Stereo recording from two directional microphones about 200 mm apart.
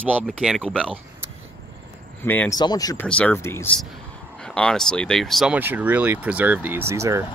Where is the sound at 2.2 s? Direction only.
10° left (ahead or behind).